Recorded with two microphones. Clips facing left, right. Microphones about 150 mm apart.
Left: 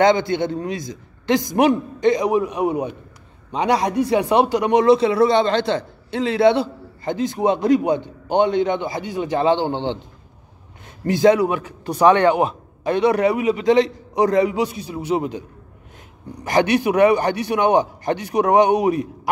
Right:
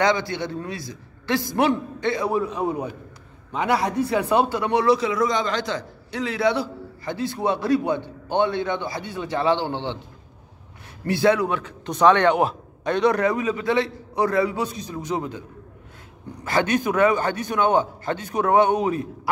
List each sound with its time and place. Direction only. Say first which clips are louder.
0.0 s a man's voice: left 6 dB; 20° left (ahead or behind)
11.1 s a man's voice: left 4 dB; 15° left (ahead or behind)
16.4 s a man's voice: left 4 dB; 15° left (ahead or behind)